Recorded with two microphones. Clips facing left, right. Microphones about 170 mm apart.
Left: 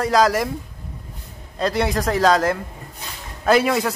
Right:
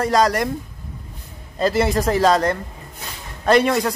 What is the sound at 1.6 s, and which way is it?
Speech, centre (ahead or behind).